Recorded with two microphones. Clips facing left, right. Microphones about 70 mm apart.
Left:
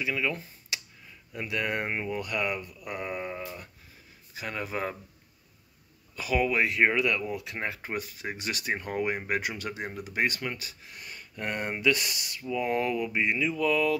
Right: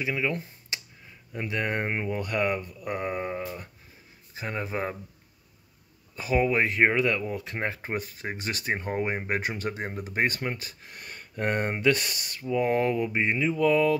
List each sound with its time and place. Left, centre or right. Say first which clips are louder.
0.0 s speech: right 2 dB; right
6.1 s speech: right 2 dB; right